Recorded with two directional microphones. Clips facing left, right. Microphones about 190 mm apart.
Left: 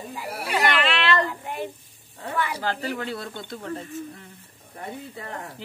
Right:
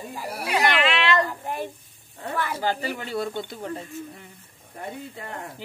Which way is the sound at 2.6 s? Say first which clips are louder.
Right 1 dB; 5° right (ahead or behind).